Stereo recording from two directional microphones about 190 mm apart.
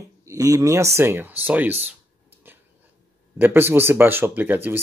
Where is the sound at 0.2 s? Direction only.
15° right (ahead or behind).